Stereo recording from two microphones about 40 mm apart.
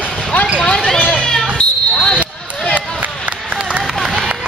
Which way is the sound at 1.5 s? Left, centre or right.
Left.